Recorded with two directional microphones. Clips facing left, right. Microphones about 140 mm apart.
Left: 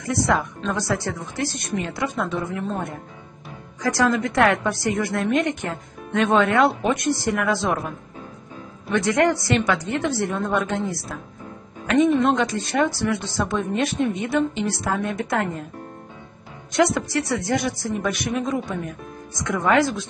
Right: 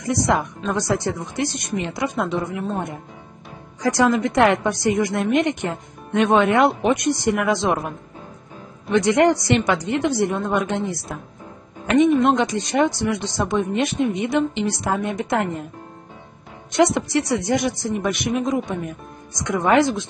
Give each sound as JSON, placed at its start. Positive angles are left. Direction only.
{"t": 0.0, "sound": "a woman's voice", "side_deg": -15}
{"t": 8.9, "sound": "a woman's voice", "side_deg": -20}
{"t": 12.1, "sound": "a woman's voice", "side_deg": -5}
{"t": 12.4, "sound": "a woman's voice", "side_deg": -20}
{"t": 16.7, "sound": "a woman's voice", "side_deg": -25}